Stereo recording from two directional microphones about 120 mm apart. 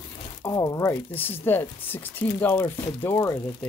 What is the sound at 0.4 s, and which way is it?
Speech, 30° left (ahead or behind).